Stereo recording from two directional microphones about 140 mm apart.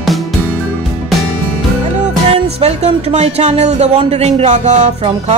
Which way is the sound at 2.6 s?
50° right (ahead or behind).